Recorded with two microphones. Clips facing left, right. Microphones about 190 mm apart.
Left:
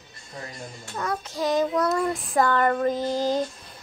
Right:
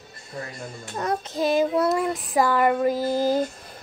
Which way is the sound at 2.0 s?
5° right (ahead or behind).